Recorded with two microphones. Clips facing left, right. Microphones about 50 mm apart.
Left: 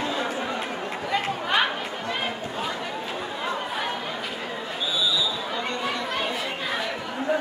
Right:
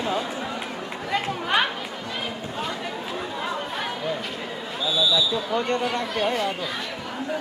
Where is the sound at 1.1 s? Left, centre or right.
Centre.